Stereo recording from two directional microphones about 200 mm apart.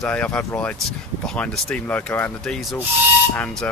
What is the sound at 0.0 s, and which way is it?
Speech, 5° left (ahead or behind).